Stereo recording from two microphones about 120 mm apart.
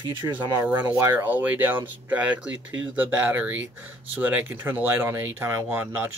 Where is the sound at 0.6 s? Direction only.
15° right (ahead or behind).